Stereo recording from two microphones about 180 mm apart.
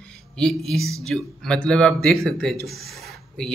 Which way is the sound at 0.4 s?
5° left (ahead or behind).